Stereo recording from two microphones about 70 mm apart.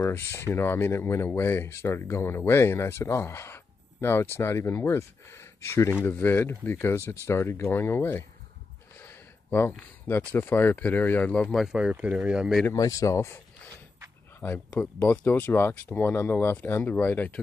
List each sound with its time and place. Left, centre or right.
0.0 s speech: left
6.1 s speech: left
8.9 s a sound: left
10.3 s speech: left
11.5 s speech: centre
11.9 s speech: centre
12.7 s speech: left
14.8 s speech: left